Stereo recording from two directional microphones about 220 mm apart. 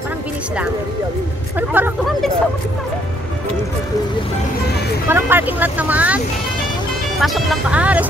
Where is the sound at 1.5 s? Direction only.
10° right (ahead or behind).